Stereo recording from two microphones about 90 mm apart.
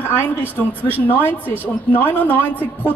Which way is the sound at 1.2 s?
20° left (ahead or behind).